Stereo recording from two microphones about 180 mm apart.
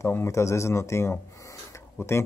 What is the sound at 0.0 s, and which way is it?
Speech, 15° left (ahead or behind).